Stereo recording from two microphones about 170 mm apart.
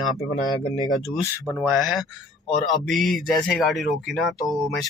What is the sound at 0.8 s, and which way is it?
Speech, 25° left (ahead or behind).